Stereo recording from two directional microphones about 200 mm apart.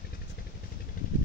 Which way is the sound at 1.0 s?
45° left (ahead or behind).